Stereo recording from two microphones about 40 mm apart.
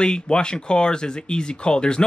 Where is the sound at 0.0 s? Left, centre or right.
Left.